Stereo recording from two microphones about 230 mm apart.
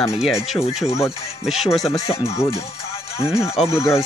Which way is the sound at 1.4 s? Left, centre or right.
Centre.